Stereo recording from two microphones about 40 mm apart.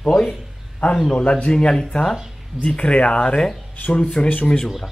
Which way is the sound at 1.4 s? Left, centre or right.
Centre.